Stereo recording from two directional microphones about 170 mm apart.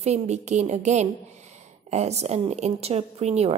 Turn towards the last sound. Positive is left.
turn(degrees=-40)  # may be behind; listen again after turning